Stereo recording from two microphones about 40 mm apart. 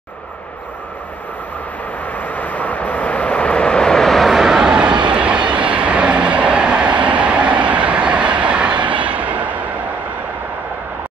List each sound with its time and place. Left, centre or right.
2.1 s vehicle: left; by 4.4 s centre
4.4 s vehicle: centre; by 9.7 s right